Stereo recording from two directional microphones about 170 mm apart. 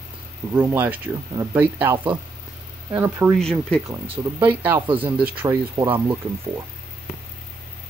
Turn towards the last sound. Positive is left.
turn(degrees=-15)  # may be behind; listen again after turning